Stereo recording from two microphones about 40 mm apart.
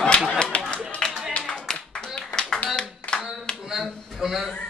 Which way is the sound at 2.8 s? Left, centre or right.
Left.